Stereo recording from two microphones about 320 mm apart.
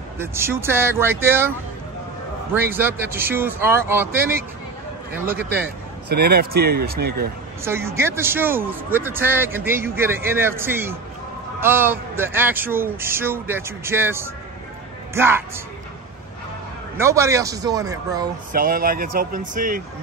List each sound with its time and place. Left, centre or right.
0.2 s a man's voice: centre
2.5 s a man's voice: centre
5.3 s speech: centre
6.0 s speech: right
7.6 s a man's voice: centre
16.9 s a man's voice: centre
18.5 s speech: right